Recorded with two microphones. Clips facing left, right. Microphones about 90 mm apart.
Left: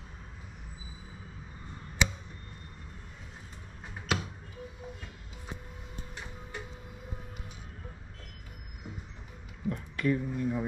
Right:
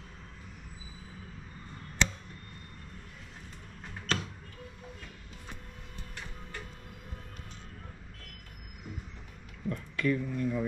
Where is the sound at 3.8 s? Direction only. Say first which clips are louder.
Left 1 dB; 10° left (ahead or behind).